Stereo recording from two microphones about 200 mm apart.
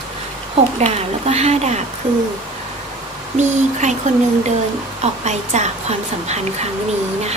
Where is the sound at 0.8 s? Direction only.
30° right (ahead or behind).